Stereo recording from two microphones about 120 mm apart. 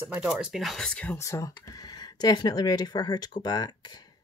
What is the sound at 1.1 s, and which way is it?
Speech, 25° left (ahead or behind).